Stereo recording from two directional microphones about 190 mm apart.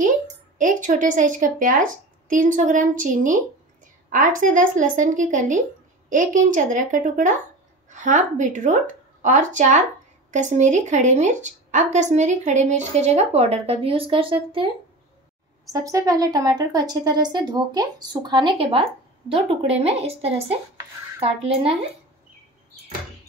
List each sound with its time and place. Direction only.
0.6 s a woman's voice: 40° right (ahead or behind)
15.7 s speech: 15° right (ahead or behind)